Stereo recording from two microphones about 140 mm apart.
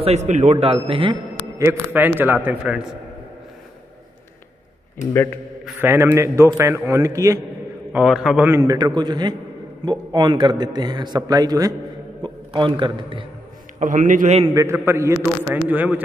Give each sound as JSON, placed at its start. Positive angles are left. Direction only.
{"t": 0.0, "sound": "a man's voice", "side_deg": -50}
{"t": 1.6, "sound": "a man's voice", "side_deg": -15}
{"t": 5.1, "sound": "a man's voice", "side_deg": 15}
{"t": 5.8, "sound": "a man's voice", "side_deg": -15}
{"t": 7.9, "sound": "a man's voice", "side_deg": -5}
{"t": 8.5, "sound": "a man's voice", "side_deg": -25}
{"t": 13.7, "sound": "a man's voice", "side_deg": -70}
{"t": 14.5, "sound": "a man's voice", "side_deg": -20}